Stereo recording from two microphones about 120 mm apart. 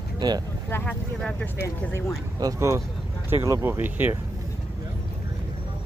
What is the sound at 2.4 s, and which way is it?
Speech, 25° right (ahead or behind).